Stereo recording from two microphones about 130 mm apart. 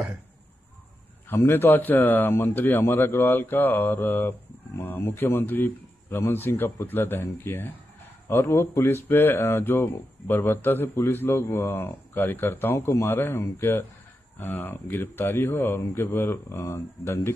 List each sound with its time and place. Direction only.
1.3 s a man's voice: 20° left (ahead or behind)